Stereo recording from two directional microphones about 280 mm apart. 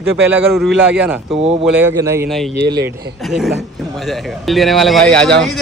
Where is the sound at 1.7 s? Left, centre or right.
Centre.